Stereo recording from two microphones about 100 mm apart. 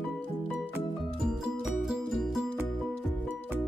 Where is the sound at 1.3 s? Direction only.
5° right (ahead or behind).